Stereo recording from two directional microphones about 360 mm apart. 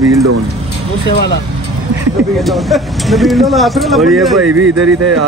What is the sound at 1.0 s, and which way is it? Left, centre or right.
Speech, left.